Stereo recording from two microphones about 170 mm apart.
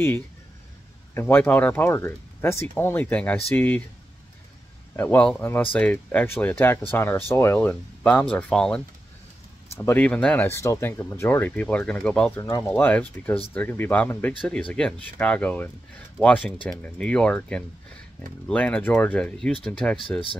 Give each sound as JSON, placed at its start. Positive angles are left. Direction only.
{"t": 1.1, "sound": "speech", "side_deg": 10}
{"t": 4.9, "sound": "speech", "side_deg": 10}
{"t": 12.4, "sound": "speech", "side_deg": 20}
{"t": 20.0, "sound": "speech", "side_deg": 30}